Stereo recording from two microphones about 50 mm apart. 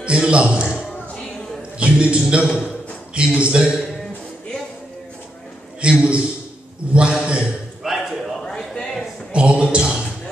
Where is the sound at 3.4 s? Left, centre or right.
Centre.